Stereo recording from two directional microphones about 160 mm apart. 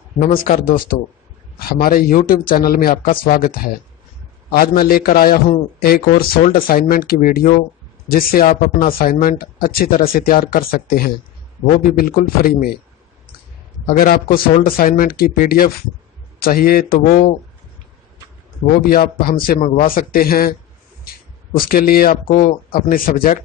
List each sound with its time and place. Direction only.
0.2 s speech: 65° left (ahead or behind)
13.8 s speech: 65° left (ahead or behind)
18.9 s speech: 70° left (ahead or behind)
21.1 s a sound: 70° left (ahead or behind)
21.5 s speech: 65° left (ahead or behind)